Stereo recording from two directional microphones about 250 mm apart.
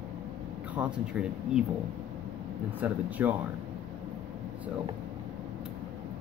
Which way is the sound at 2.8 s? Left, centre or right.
Centre.